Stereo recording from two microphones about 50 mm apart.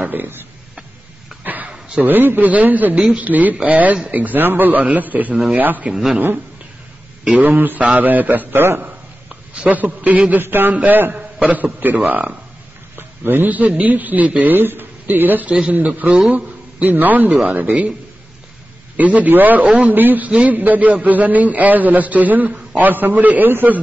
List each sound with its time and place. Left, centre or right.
0.1 s a man's voice: right
1.4 s a sound: right
2.0 s a man's voice: right
5.9 s speech: centre
7.4 s a man's voice: right
9.5 s a man's voice: right
10.4 s a man's voice: right
11.1 s a man's voice: right
18.9 s a man's voice: right